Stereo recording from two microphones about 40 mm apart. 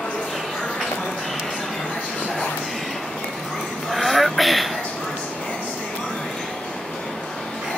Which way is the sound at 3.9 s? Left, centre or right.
Centre.